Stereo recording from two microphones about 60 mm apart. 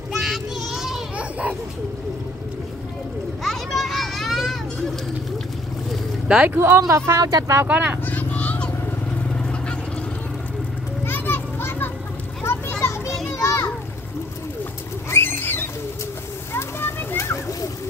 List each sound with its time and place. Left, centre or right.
0.1 s child singing: centre
1.1 s a sound: right
3.4 s children playing: centre
6.2 s speech: centre
6.5 s speech: right
6.8 s speech: right
7.6 s speech: right
8.0 s vehicle: left
11.1 s children playing: left
13.4 s children playing: left
15.0 s bird: left
16.5 s a sound: left